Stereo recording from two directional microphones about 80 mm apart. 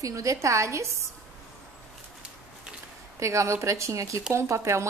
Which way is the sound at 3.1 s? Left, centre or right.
Right.